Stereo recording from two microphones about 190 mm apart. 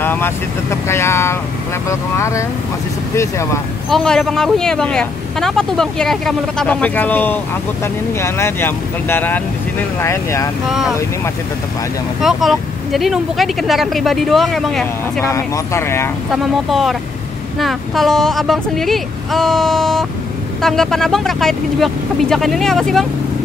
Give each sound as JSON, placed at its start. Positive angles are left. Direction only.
{"t": 0.0, "sound": "speech", "side_deg": 10}
{"t": 3.9, "sound": "speech", "side_deg": 0}
{"t": 12.2, "sound": "speech", "side_deg": 0}
{"t": 15.2, "sound": "speech", "side_deg": 15}
{"t": 16.5, "sound": "speech", "side_deg": 0}